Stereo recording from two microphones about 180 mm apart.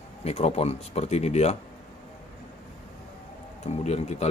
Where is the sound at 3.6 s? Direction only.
40° left (ahead or behind).